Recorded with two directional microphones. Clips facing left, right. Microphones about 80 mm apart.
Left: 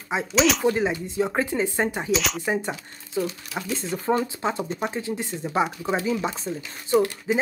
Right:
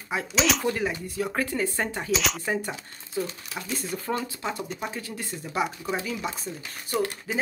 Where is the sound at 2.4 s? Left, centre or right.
Left.